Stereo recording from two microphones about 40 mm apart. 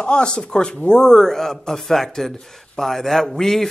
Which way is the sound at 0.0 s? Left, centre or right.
Left.